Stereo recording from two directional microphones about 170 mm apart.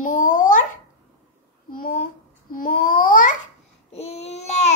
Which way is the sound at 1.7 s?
60° left (ahead or behind).